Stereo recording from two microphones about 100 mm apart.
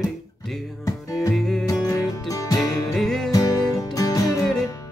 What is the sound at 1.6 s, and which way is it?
Music, 35° left (ahead or behind).